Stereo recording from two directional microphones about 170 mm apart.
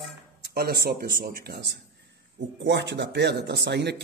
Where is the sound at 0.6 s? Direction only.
65° right (ahead or behind).